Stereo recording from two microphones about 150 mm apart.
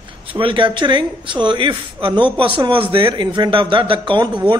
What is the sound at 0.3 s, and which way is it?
Speech, 35° right (ahead or behind).